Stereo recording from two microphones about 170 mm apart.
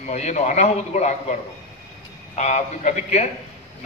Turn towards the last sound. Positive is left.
turn(degrees=45)  # may be behind; listen again after turning